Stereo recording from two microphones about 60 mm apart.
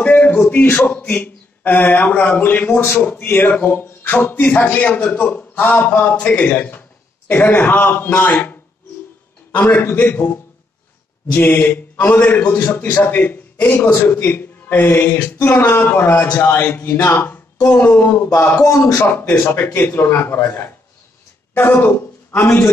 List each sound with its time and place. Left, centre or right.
0.0 s a man's voice: left
9.5 s a man's voice: left
11.6 s a man's voice: left
17.6 s a man's voice: left
18.7 s a man's voice: left
19.0 s a man's voice: left
19.7 s a man's voice: left